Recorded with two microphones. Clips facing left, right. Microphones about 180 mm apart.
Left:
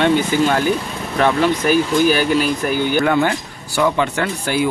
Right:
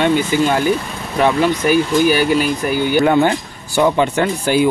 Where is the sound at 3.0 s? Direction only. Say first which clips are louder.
Right 3 dB; 25° right (ahead or behind).